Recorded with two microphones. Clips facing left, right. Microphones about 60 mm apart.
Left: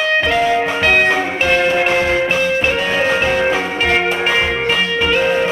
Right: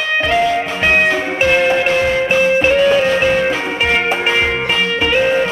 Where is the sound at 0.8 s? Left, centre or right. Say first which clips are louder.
Right 2 dB; centre.